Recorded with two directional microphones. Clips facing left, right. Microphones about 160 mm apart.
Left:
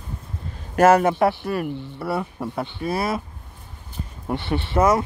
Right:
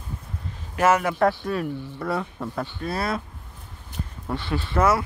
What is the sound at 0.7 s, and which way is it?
Speech, 40° left (ahead or behind).